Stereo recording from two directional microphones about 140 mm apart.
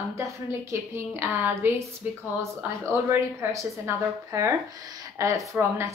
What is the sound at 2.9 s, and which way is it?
A woman's voice, 15° right (ahead or behind).